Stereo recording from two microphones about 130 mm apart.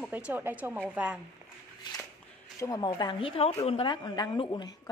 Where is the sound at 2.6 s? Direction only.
30° left (ahead or behind).